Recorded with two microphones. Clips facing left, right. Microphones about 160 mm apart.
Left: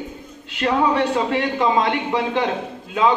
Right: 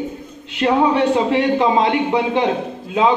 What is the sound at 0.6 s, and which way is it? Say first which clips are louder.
A man's voice: right 3 dB; 25° right (ahead or behind).